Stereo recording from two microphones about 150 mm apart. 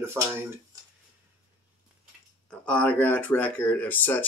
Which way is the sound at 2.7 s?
10° left (ahead or behind).